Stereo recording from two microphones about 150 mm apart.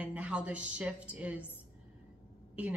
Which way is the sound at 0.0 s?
10° right (ahead or behind).